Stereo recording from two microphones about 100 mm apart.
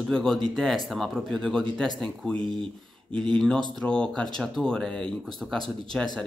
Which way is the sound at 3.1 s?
55° right (ahead or behind).